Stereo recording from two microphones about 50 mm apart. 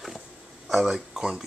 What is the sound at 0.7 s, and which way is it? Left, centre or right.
Speech, centre.